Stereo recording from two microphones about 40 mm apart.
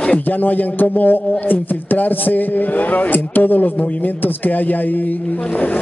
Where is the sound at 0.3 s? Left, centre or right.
Left.